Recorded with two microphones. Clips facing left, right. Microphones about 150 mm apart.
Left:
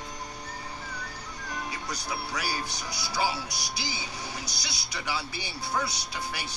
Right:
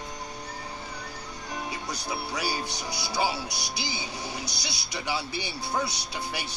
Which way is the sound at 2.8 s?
25° right (ahead or behind).